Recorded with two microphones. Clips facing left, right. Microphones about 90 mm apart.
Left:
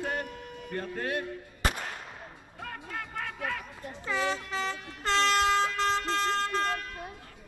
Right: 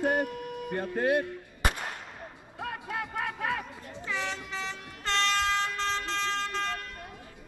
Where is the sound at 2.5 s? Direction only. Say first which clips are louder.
Right 4 dB; 15° right (ahead or behind).